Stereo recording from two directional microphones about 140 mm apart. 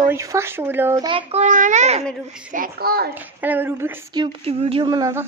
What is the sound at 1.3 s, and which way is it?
Speech, 60° right (ahead or behind).